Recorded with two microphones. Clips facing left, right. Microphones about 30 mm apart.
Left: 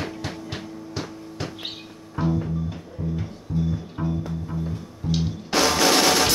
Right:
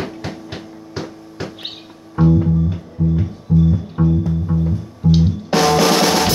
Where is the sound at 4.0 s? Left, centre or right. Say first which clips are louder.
Right 11 dB; centre.